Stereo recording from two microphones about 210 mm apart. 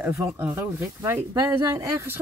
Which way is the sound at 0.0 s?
10° right (ahead or behind).